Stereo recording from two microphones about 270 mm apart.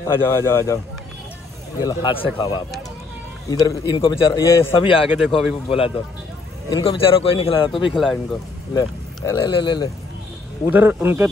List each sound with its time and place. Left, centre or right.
0.0 s a man's voice: centre
1.8 s a man's voice: centre
7.9 s speech: centre
8.7 s speech: centre
10.7 s a man's voice: centre